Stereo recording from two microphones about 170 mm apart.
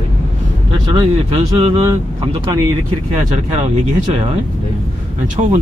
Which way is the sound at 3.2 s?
40° right (ahead or behind).